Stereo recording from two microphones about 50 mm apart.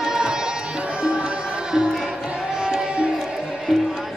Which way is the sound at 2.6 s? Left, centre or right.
Right.